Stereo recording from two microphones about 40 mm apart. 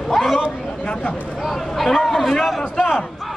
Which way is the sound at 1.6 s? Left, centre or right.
Centre.